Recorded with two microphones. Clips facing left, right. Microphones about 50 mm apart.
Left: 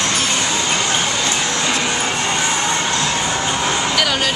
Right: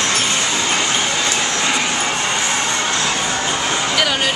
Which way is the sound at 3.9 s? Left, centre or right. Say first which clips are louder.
Even; centre.